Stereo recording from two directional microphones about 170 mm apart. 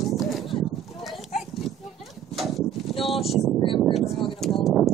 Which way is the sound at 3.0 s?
Centre (ahead or behind).